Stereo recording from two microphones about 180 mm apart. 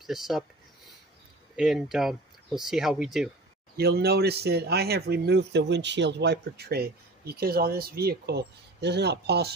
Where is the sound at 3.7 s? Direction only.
60° right (ahead or behind).